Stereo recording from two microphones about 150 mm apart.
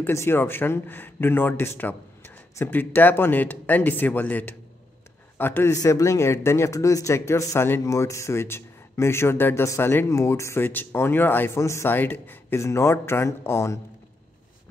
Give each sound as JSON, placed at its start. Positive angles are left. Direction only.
{"t": 0.0, "sound": "speech", "side_deg": 15}